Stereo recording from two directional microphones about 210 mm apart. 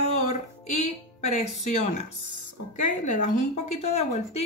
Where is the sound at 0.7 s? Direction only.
35° left (ahead or behind).